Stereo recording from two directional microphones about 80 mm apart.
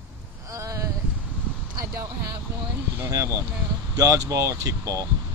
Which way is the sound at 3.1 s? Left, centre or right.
Right.